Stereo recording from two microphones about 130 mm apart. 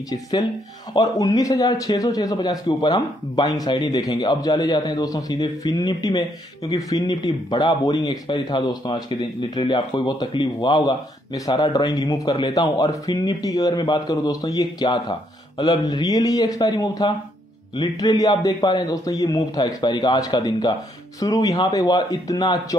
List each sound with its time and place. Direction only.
0.1 s a man's voice: 30° left (ahead or behind)